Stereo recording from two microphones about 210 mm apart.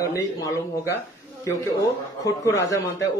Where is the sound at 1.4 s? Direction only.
15° left (ahead or behind).